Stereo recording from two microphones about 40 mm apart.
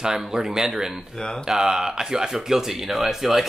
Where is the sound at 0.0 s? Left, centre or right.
Centre.